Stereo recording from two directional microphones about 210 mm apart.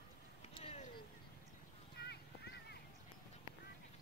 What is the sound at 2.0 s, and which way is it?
Clip-clop, 50° left (ahead or behind).